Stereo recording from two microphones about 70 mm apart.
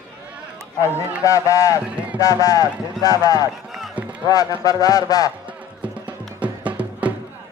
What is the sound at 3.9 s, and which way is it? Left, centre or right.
Run, centre.